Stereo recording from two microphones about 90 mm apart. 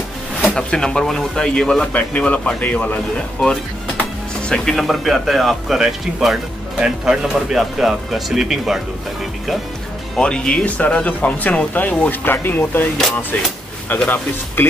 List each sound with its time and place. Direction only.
0.6 s speech: 10° left (ahead or behind)
10.1 s speech: 10° left (ahead or behind)
13.9 s speech: 20° left (ahead or behind)